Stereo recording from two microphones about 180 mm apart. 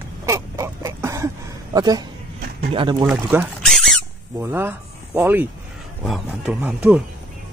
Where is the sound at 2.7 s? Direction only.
30° right (ahead or behind).